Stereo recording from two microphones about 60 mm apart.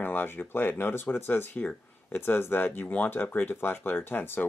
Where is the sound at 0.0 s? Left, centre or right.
Left.